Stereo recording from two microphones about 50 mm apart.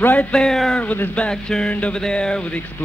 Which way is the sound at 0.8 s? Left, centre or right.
Left.